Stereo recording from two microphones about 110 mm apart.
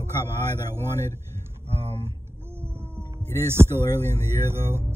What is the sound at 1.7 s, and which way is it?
Speech, 65° right (ahead or behind).